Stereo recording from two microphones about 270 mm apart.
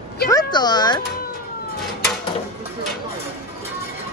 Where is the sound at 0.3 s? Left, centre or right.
Centre.